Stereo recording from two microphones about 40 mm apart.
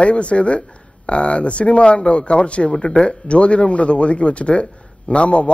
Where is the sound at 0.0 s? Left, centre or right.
Left.